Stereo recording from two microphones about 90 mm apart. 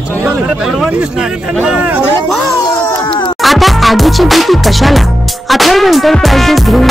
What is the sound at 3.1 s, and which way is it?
Music, 60° left (ahead or behind).